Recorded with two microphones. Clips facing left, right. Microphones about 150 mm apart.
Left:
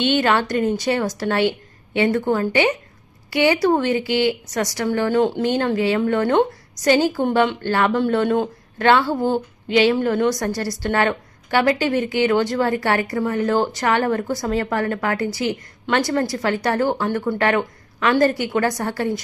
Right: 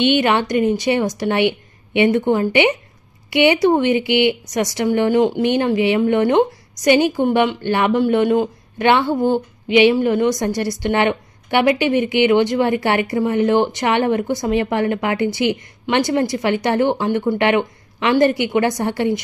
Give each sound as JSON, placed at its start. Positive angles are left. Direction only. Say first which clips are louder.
{"t": 0.1, "sound": "a woman's voice", "louder": "right 2 dB", "side_deg": -15}